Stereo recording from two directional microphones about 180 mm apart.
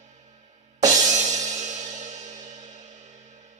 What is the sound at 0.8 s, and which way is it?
Music, 40° right (ahead or behind).